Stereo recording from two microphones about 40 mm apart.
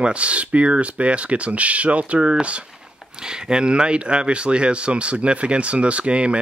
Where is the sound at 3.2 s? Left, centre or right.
Centre.